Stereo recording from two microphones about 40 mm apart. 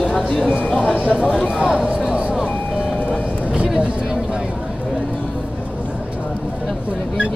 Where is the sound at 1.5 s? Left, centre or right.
Centre.